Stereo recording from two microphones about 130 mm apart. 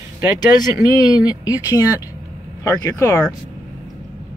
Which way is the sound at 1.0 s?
30° left (ahead or behind).